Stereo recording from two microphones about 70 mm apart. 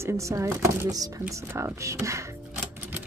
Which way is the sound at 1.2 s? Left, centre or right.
Right.